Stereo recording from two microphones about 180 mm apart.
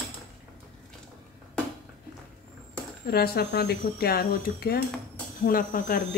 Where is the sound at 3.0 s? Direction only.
60° left (ahead or behind).